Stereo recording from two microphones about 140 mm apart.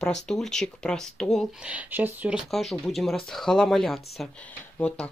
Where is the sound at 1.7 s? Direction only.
10° right (ahead or behind).